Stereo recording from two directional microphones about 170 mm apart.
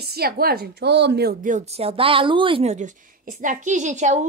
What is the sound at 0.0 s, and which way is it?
Speech, 65° right (ahead or behind).